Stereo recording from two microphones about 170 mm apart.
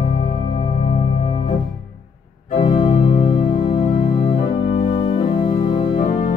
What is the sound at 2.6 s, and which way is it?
Music, 35° left (ahead or behind).